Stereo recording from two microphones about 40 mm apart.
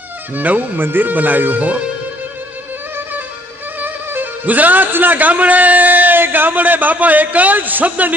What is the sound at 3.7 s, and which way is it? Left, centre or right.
Music, right.